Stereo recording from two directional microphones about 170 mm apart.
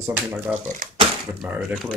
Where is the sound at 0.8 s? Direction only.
50° right (ahead or behind).